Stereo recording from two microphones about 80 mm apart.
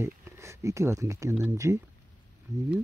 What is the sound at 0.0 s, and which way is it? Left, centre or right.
Speech, right.